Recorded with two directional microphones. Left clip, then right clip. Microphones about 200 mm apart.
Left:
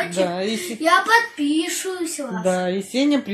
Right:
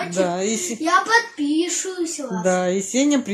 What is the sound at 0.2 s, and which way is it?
Speech, 10° right (ahead or behind).